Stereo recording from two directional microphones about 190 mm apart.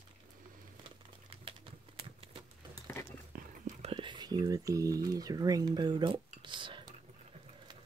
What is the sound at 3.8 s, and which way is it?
Speech, 25° right (ahead or behind).